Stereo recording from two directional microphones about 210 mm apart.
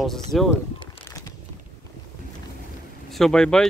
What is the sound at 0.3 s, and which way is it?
Speech, centre (ahead or behind).